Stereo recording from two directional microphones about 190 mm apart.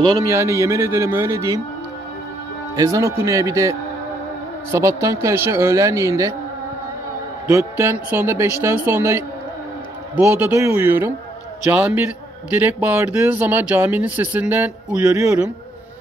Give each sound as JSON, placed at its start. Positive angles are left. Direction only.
{"t": 0.0, "sound": "speech", "side_deg": -20}
{"t": 2.8, "sound": "speech", "side_deg": -15}
{"t": 7.4, "sound": "speech", "side_deg": -15}